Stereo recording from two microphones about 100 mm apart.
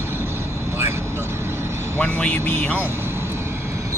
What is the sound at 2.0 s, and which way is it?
Speech, 15° left (ahead or behind).